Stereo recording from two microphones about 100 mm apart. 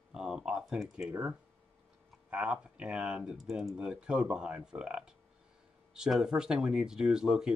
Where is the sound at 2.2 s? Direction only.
10° right (ahead or behind).